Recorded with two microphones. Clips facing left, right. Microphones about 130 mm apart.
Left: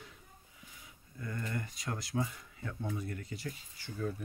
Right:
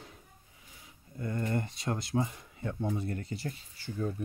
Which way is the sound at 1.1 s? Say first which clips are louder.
Right 7 dB; 30° right (ahead or behind).